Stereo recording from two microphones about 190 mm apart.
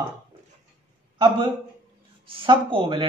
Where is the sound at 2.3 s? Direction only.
25° right (ahead or behind).